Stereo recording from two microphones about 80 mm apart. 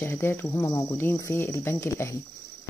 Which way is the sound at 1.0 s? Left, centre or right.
Left.